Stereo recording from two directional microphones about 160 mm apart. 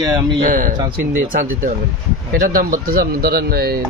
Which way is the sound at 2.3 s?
60° right (ahead or behind).